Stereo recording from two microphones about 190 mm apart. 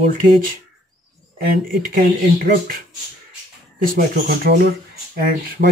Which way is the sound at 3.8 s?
50° right (ahead or behind).